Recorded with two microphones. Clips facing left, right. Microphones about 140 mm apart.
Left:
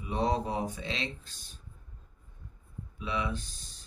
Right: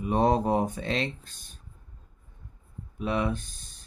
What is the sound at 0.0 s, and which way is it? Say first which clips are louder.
Speech: right 6 dB; 55° right (ahead or behind).